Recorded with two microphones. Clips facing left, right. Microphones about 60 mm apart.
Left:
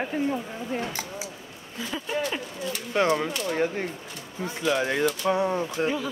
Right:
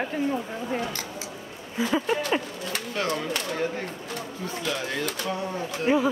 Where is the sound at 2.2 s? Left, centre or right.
Right.